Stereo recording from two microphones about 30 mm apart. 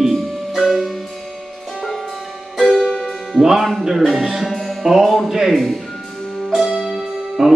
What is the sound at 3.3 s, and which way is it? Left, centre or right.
Music, centre.